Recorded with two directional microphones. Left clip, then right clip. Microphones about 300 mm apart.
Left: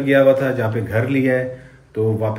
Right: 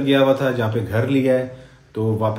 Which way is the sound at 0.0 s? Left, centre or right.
Centre.